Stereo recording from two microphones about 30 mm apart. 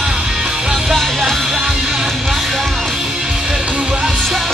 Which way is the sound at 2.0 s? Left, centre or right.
Centre.